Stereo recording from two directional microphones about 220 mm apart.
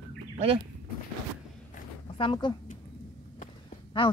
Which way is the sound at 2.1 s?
20° left (ahead or behind).